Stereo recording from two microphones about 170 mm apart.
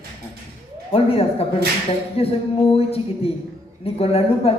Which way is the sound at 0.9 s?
35° left (ahead or behind).